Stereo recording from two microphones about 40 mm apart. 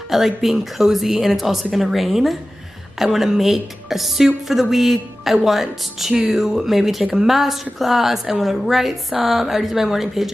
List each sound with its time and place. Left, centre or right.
0.1 s a woman's voice: centre